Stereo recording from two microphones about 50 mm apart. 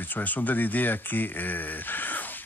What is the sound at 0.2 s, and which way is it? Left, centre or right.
Speech, left.